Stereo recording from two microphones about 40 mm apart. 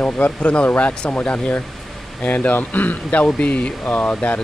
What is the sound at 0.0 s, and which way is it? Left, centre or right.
Speech, left.